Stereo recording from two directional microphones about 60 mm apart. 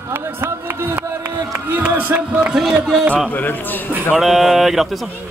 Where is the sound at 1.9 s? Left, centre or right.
Right.